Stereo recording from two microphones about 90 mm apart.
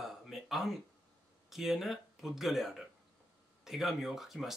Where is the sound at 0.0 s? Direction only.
Centre (ahead or behind).